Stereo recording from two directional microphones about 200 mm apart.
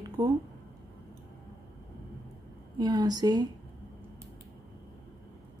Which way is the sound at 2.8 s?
20° right (ahead or behind).